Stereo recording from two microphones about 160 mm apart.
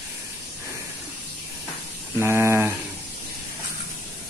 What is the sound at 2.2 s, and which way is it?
Speech, 15° right (ahead or behind).